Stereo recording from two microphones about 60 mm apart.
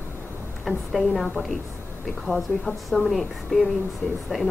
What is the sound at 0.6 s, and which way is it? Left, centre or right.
A woman's voice, centre.